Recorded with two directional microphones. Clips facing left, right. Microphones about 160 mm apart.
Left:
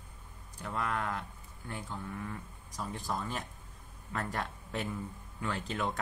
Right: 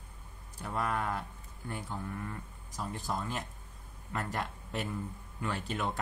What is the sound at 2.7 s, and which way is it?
Speech, 5° right (ahead or behind).